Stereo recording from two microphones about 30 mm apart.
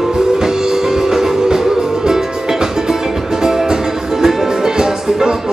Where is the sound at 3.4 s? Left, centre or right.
Centre.